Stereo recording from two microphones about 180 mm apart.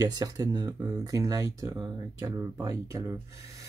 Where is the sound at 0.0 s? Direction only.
20° right (ahead or behind).